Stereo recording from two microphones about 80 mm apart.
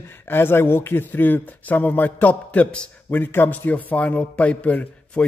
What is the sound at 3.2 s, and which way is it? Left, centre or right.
A man's voice, left.